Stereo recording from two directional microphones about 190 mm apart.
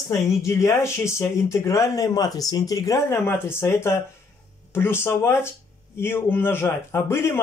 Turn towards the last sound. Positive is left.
turn(degrees=15)  # may be behind; listen again after turning